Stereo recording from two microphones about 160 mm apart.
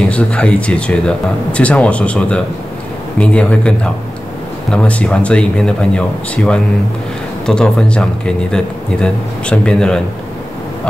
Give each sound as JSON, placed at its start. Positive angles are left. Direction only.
{"t": 0.1, "sound": "speech", "side_deg": 5}